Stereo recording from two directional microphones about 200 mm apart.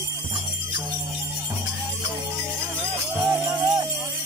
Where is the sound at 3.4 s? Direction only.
15° right (ahead or behind).